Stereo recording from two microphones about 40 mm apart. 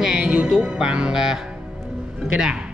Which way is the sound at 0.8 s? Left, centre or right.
Centre.